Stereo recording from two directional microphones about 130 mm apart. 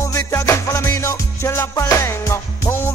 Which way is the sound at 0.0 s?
25° left (ahead or behind).